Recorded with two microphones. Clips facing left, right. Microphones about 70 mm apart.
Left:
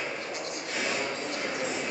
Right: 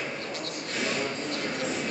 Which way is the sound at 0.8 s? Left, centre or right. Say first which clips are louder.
Right 1 dB; centre.